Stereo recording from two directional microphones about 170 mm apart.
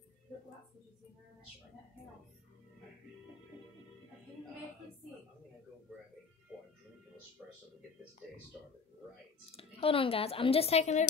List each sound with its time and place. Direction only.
9.5 s speech: 35° left (ahead or behind)